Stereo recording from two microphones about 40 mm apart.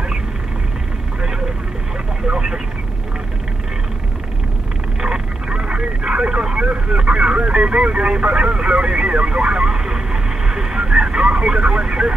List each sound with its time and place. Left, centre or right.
2.2 s vehicle: right
5.0 s vehicle: centre
5.6 s vehicle: right